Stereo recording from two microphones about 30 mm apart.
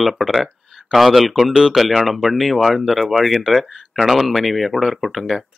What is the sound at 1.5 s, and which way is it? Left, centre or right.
Speech, centre.